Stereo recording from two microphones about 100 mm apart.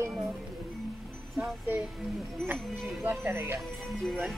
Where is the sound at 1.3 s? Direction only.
20° right (ahead or behind).